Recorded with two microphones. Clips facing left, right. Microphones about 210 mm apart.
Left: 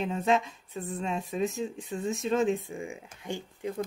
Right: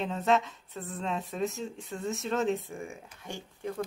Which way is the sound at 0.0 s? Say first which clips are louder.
Left 1 dB; 15° left (ahead or behind).